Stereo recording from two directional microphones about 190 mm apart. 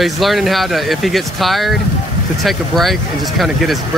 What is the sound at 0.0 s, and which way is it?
Speech, centre (ahead or behind).